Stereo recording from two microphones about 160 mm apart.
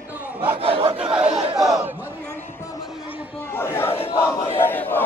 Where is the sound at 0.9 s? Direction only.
5° right (ahead or behind).